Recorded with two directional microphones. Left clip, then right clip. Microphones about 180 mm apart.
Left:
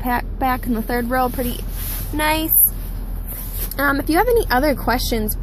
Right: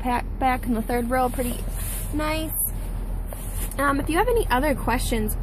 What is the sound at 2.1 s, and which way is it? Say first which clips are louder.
Speech: left 7 dB; 30° left (ahead or behind).